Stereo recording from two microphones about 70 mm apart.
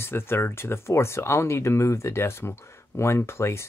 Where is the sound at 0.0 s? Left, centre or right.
Left.